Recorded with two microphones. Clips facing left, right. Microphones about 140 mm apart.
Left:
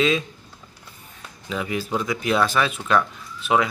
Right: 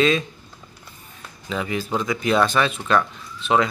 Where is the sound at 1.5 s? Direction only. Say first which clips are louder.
Right 1 dB; 5° left (ahead or behind).